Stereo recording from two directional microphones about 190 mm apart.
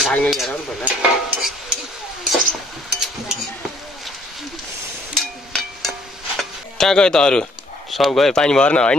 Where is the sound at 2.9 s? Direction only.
5° right (ahead or behind).